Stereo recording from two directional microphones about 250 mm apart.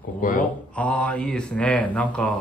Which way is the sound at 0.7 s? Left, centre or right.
Centre.